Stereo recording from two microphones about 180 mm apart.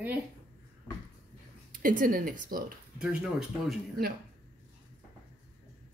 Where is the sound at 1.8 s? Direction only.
50° right (ahead or behind).